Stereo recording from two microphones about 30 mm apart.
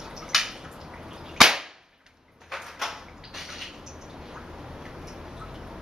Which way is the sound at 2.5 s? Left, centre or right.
Centre.